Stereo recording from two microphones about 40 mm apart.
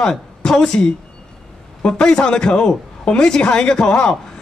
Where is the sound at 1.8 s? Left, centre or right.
Left.